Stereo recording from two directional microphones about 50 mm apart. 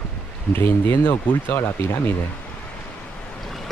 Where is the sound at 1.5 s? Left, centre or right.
Left.